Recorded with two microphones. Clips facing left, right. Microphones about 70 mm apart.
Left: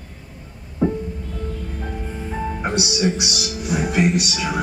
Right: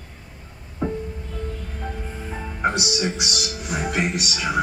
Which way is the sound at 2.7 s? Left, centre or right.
Centre.